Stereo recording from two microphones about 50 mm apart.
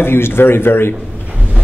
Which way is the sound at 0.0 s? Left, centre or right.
Left.